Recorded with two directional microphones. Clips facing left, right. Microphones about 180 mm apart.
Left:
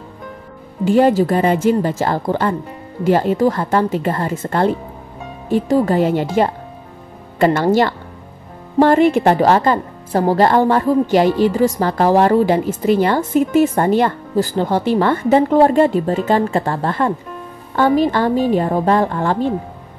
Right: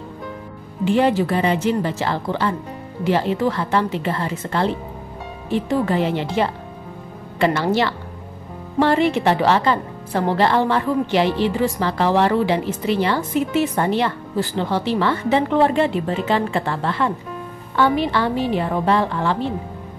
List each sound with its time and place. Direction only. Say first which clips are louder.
0.8 s a woman's voice: left 4 dB; 40° left (ahead or behind)